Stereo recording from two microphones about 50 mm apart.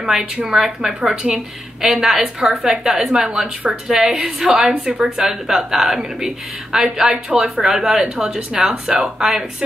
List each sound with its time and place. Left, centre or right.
0.1 s a woman's voice: centre